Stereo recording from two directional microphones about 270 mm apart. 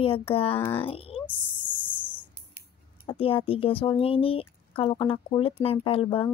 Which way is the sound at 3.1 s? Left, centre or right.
Centre.